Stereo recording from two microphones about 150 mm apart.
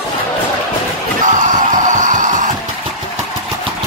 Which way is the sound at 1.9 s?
55° right (ahead or behind).